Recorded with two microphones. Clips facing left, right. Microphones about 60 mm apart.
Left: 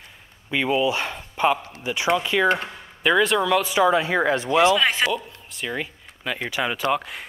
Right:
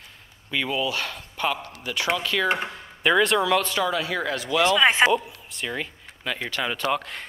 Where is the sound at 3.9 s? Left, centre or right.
Left.